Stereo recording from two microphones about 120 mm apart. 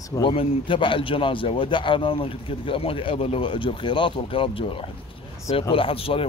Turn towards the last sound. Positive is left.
turn(degrees=50)  # may be behind; listen again after turning